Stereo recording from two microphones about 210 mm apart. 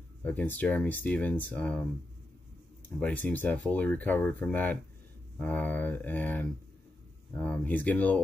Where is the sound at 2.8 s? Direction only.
5° left (ahead or behind).